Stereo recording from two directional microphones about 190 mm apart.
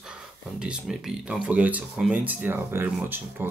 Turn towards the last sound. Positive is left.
turn(degrees=-10)  # may be behind; listen again after turning